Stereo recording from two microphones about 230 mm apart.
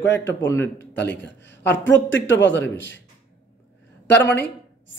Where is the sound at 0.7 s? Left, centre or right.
Left.